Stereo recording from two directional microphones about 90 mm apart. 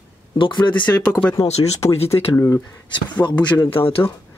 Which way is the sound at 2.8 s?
60° left (ahead or behind).